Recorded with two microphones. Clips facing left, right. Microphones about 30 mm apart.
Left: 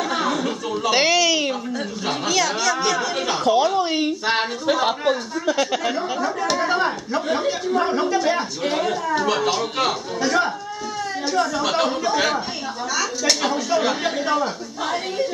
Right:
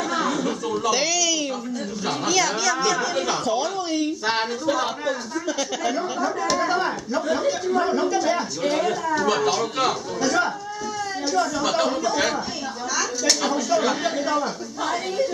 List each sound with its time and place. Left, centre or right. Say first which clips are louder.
0.0 s chuckle: left 1 dB; left
2.0 s speech: even; centre; by 4.1 s left
4.3 s speech: left 2 dB; centre
4.8 s speech: left 5 dB; left
5.9 s speech: left 1 dB; centre